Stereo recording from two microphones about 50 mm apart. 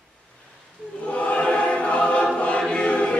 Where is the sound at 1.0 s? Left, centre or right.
Left.